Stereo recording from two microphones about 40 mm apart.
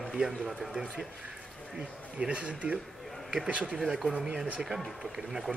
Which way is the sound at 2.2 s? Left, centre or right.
Right.